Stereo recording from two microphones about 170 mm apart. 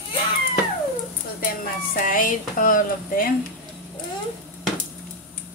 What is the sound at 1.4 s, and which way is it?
Speech, 55° left (ahead or behind).